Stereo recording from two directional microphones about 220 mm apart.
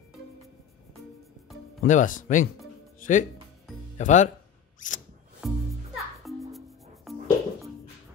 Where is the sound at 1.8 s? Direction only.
35° left (ahead or behind).